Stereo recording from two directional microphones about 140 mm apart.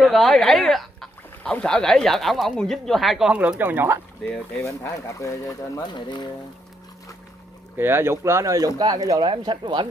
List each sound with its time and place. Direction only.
0.0 s speech: centre (ahead or behind); by 4.0 s 15° right (ahead or behind)
4.3 s speech: 5° left (ahead or behind)
4.6 s speech: 25° left (ahead or behind)
7.7 s speech: 15° right (ahead or behind); by 9.8 s 35° right (ahead or behind)